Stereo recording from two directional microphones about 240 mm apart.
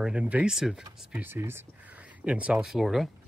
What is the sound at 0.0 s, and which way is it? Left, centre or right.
Speech, centre.